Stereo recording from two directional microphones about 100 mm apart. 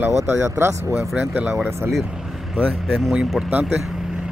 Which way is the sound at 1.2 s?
15° right (ahead or behind).